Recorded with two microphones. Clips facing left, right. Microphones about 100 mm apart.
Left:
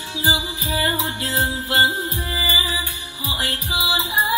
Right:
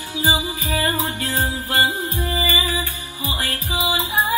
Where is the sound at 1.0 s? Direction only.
20° left (ahead or behind).